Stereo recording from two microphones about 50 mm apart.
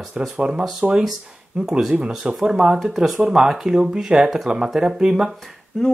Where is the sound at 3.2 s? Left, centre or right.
Centre.